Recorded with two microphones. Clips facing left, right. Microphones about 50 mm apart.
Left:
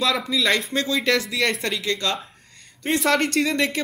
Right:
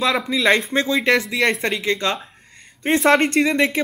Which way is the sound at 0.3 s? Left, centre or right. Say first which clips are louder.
Right 4 dB; right.